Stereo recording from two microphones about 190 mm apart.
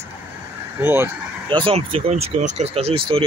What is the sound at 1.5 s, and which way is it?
Speech, 25° right (ahead or behind).